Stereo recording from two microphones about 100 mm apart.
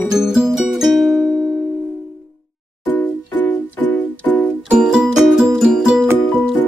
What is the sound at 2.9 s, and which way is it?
Music, 15° left (ahead or behind).